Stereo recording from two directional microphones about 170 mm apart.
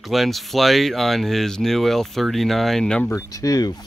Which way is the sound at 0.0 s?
Centre (ahead or behind).